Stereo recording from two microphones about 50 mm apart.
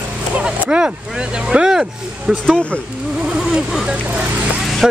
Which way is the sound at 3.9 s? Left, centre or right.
Right.